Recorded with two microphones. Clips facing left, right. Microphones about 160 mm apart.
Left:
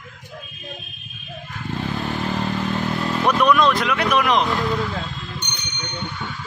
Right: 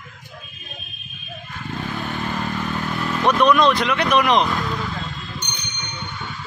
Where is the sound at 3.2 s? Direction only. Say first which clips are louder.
Right 1 dB; 5° left (ahead or behind).